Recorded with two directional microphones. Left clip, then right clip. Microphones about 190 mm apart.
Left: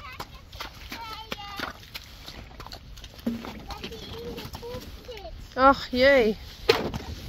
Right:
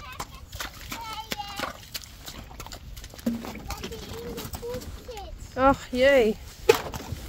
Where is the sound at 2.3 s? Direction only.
80° right.